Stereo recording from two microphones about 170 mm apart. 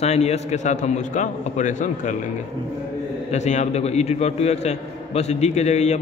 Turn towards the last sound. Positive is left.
turn(degrees=40)  # may be behind; listen again after turning